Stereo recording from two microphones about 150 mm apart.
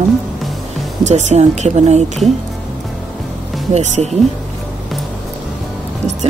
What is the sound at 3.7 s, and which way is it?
Speech, 50° right (ahead or behind).